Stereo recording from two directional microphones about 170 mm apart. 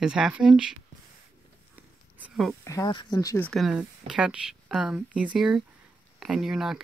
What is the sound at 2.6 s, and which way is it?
Speech, 20° left (ahead or behind).